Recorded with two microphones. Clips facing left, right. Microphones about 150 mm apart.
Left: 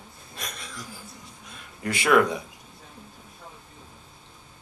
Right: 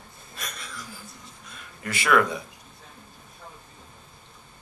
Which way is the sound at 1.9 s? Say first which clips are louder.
Left 2 dB; 20° left (ahead or behind).